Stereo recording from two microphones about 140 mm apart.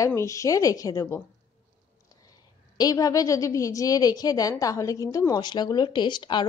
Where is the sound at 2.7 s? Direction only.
25° left (ahead or behind).